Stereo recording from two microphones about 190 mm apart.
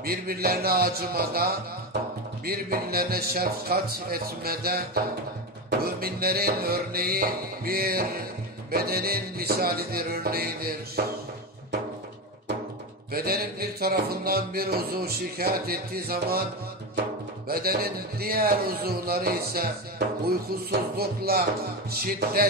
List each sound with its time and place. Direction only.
0.0 s speech: 55° right (ahead or behind)
13.1 s speech: 55° right (ahead or behind)
17.5 s speech: 55° right (ahead or behind)